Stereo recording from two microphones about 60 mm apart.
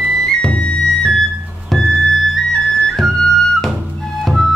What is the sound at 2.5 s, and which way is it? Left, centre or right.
Flute, centre.